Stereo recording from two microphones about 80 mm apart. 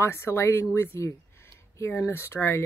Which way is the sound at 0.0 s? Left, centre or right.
Left.